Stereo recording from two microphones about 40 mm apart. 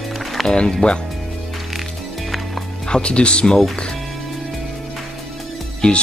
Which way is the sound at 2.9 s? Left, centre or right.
Left.